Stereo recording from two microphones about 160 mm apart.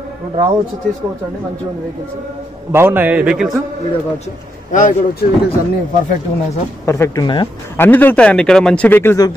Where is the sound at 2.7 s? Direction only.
15° right (ahead or behind).